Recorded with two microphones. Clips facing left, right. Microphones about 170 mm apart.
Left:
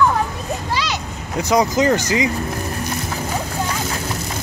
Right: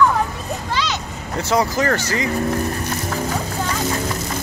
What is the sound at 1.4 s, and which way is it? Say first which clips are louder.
Speech: left 3 dB; 15° left (ahead or behind).